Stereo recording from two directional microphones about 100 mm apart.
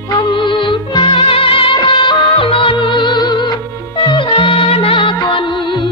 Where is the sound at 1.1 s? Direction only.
65° left (ahead or behind); by 3.5 s 50° left (ahead or behind).